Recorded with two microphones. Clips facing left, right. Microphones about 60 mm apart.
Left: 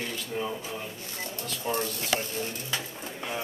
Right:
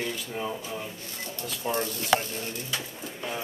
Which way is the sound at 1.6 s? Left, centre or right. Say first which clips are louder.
Right 1 dB; centre.